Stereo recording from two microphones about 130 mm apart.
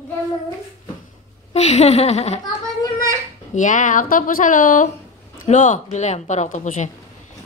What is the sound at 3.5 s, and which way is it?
Speech, 75° left (ahead or behind).